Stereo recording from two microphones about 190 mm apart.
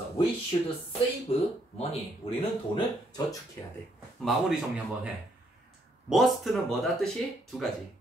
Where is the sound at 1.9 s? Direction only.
30° left (ahead or behind).